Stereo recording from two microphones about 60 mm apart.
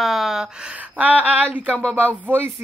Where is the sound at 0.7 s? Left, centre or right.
Right.